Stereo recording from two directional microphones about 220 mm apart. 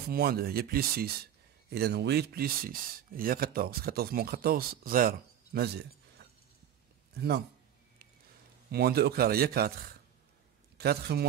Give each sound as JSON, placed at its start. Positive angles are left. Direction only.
{"t": 0.1, "sound": "speech", "side_deg": -45}
{"t": 8.7, "sound": "speech", "side_deg": -45}